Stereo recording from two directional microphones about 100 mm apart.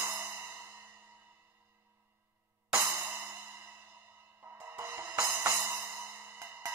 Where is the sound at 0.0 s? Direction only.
25° right (ahead or behind).